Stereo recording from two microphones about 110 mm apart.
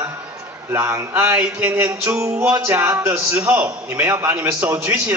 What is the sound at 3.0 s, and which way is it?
A man's voice, 25° right (ahead or behind).